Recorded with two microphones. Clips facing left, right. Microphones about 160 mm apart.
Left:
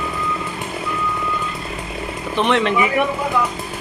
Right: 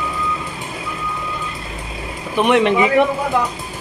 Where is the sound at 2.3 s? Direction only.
15° right (ahead or behind).